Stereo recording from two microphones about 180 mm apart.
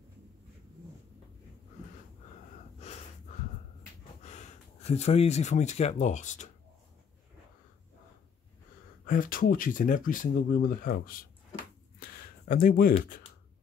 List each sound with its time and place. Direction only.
2.8 s wheeze: 35° left (ahead or behind)
4.2 s speech: 40° left (ahead or behind)
9.0 s speech: 50° left (ahead or behind)
12.0 s a sound: 50° left (ahead or behind)